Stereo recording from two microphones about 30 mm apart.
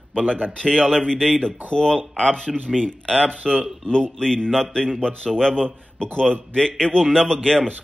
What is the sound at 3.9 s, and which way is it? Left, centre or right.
A man's voice, left.